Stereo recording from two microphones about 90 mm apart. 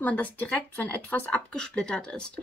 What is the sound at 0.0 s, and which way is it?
Speech, 15° left (ahead or behind).